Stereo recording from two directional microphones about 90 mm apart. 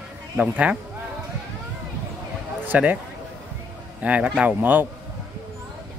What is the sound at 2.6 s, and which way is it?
Speech, 20° right (ahead or behind).